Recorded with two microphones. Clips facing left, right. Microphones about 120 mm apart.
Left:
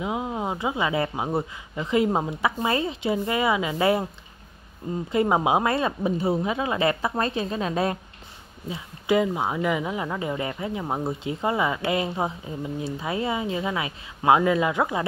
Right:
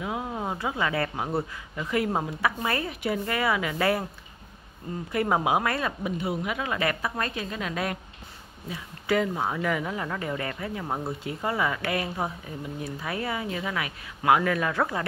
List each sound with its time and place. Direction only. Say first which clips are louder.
0.0 s speech: left 3 dB; 20° left (ahead or behind)
5.1 s speech: left 3 dB; 20° left (ahead or behind)